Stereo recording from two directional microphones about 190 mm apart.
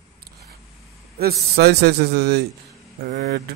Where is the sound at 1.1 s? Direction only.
55° right (ahead or behind).